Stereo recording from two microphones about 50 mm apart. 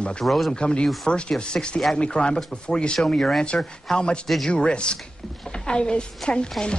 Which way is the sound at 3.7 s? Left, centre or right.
Centre.